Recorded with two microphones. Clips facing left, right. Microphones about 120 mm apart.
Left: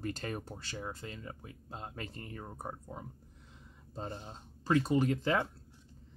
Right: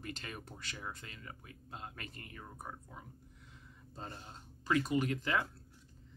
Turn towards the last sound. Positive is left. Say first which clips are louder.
# left 4 dB
turn(degrees=30)  # may be behind; listen again after turning